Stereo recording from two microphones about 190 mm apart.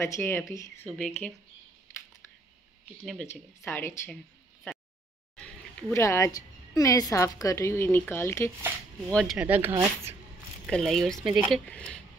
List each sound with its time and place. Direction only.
0.0 s a woman's voice: 15° left (ahead or behind)
0.8 s speech: 5° left (ahead or behind)
3.1 s a woman's voice: 10° left (ahead or behind)
5.9 s a woman's voice: 15° left (ahead or behind)
9.1 s speech: centre (ahead or behind); by 10.1 s 20° right (ahead or behind)
10.7 s speech: centre (ahead or behind)